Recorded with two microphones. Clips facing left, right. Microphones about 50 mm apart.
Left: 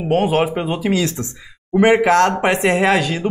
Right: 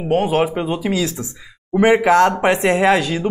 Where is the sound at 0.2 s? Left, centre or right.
Centre.